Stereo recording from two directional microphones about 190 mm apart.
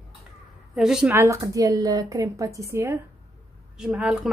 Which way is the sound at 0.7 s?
5° right (ahead or behind).